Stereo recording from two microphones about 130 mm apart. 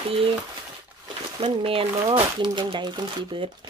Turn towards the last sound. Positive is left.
turn(degrees=-35)  # may be behind; listen again after turning